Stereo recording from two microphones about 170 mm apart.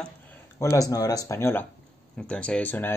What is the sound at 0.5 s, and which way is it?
Speech, 20° left (ahead or behind).